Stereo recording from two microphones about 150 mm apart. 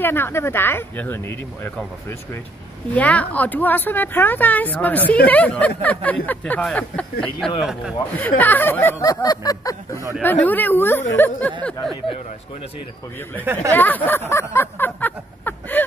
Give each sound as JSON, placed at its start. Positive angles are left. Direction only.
{"t": 0.0, "sound": "speech", "side_deg": 15}
{"t": 2.9, "sound": "speech", "side_deg": 10}
{"t": 9.1, "sound": "a sound", "side_deg": 25}
{"t": 10.2, "sound": "speech", "side_deg": 10}
{"t": 13.4, "sound": "speech", "side_deg": -15}
{"t": 13.7, "sound": "speech", "side_deg": 10}
{"t": 14.3, "sound": "a sound", "side_deg": 15}